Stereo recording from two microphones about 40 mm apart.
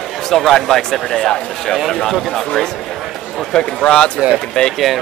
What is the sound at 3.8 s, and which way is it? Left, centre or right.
Speech, left.